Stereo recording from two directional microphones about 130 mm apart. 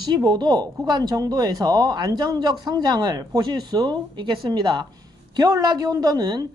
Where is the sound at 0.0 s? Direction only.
35° right (ahead or behind).